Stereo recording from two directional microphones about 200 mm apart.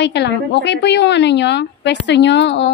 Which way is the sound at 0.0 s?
60° left (ahead or behind).